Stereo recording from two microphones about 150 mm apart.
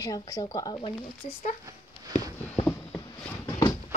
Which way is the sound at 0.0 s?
25° left (ahead or behind).